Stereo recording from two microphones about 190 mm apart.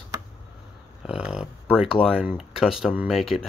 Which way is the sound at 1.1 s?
5° right (ahead or behind).